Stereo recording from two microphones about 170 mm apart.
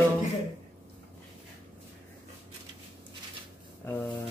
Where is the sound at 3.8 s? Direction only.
15° left (ahead or behind).